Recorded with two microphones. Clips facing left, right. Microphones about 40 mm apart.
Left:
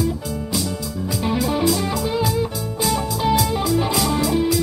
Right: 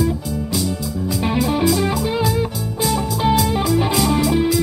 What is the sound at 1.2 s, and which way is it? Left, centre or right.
Music, centre.